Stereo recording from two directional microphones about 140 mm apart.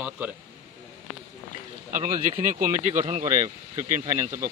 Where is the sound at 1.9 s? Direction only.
65° right (ahead or behind).